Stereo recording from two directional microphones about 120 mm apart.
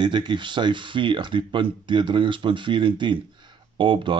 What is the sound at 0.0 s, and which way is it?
Speech, 40° right (ahead or behind).